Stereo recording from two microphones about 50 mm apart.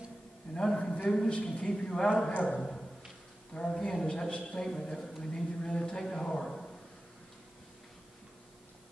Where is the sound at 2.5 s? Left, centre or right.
Centre.